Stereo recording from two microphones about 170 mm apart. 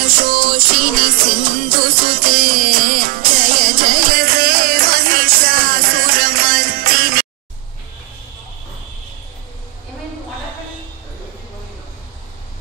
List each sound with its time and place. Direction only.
0.0 s music: 60° right (ahead or behind)